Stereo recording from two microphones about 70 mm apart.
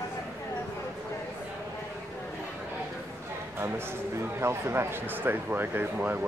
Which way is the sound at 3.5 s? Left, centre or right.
Right.